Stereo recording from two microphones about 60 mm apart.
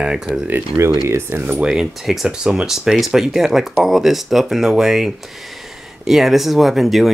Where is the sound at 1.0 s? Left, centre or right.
Right.